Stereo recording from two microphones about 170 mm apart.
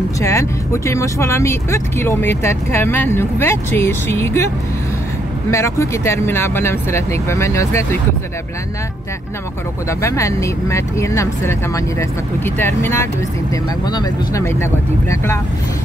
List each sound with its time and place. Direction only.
0.2 s speech: 15° left (ahead or behind)
5.5 s speech: 15° left (ahead or behind)
9.8 s speech: 15° left (ahead or behind)